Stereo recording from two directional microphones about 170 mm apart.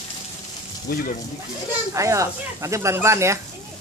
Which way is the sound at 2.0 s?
20° right (ahead or behind).